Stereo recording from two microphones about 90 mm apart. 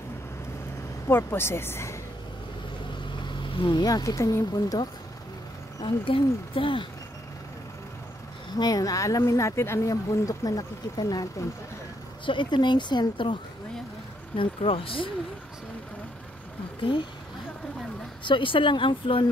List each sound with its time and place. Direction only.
1.0 s a woman's voice: 25° left (ahead or behind)
3.4 s speech: 70° left (ahead or behind)
3.8 s speech: 45° left (ahead or behind)
5.9 s speech: 85° left
8.5 s speech: 45° left (ahead or behind)
12.3 s speech: 60° left (ahead or behind)
14.3 s speech: 80° left
16.8 s speech: 65° left (ahead or behind)
18.2 s speech: 65° left (ahead or behind)